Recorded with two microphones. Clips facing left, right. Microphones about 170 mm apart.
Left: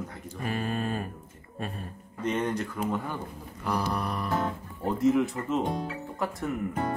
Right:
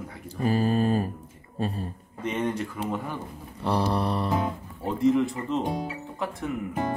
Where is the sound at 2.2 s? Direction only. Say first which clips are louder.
Right 1 dB; 5° right (ahead or behind).